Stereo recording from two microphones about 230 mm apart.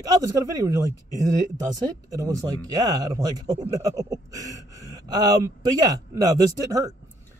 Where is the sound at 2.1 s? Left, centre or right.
Centre.